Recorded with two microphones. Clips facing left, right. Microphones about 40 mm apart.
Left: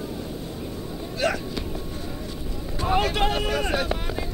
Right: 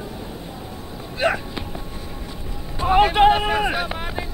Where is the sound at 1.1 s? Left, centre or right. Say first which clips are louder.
Right 4 dB; right.